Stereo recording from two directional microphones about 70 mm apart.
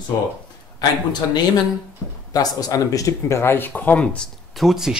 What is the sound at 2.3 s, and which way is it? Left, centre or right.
Speech, left.